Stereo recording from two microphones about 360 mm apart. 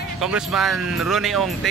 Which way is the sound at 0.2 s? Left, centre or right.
Centre.